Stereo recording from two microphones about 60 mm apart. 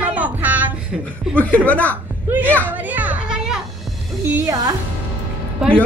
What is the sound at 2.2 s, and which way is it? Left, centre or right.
Speech, right.